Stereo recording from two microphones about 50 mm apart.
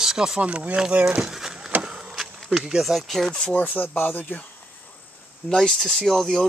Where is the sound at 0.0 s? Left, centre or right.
Centre.